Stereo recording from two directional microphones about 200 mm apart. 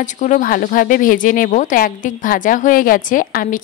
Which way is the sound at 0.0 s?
40° left (ahead or behind).